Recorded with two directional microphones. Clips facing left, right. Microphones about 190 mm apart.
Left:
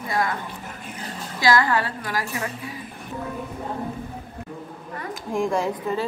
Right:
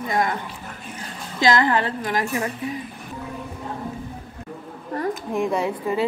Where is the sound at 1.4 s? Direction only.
20° right (ahead or behind).